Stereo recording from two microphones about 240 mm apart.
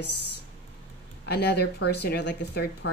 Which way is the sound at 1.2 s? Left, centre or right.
Left.